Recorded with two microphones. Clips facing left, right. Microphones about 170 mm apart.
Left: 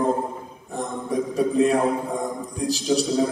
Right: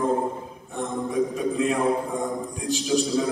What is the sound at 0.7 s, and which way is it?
A man's voice, 35° left (ahead or behind).